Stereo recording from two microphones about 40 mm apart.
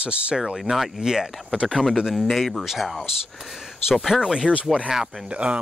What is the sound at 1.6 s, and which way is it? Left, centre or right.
Speech, centre.